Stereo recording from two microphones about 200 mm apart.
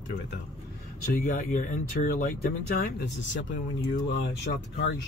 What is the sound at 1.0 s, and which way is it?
Speech, 45° left (ahead or behind).